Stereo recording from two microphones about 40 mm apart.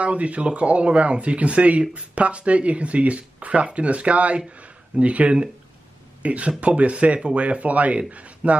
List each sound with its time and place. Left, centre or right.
0.0 s speech: right